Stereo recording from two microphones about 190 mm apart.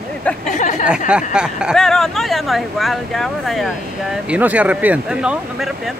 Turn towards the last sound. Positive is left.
turn(degrees=0)  # may be behind; listen again after turning